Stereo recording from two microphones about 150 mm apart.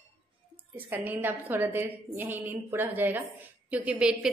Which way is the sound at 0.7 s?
10° right (ahead or behind).